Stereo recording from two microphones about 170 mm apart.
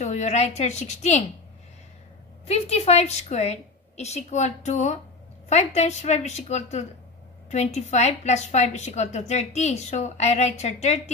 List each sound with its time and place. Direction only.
0.0 s a woman's voice: 40° left (ahead or behind)
2.4 s a woman's voice: 40° left (ahead or behind)